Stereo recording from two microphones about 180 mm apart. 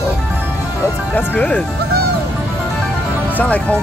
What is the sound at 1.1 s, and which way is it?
Speech, 10° left (ahead or behind).